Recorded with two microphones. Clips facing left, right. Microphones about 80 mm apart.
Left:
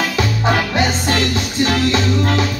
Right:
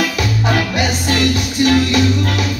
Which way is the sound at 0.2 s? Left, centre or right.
Left.